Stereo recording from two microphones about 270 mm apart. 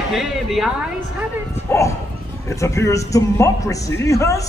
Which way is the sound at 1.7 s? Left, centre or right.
Centre.